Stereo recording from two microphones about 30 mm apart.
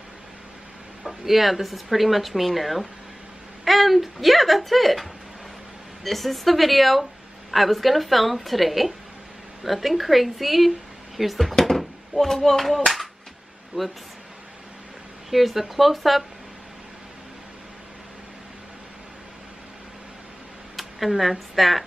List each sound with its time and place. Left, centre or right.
1.0 s a woman's voice: centre
6.0 s a woman's voice: centre
11.6 s a sound: centre
12.4 s a woman's voice: centre
13.7 s speech: right
15.2 s a woman's voice: centre
20.7 s speech: centre